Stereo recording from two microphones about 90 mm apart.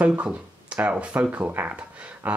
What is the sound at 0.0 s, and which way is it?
Speech, 15° right (ahead or behind).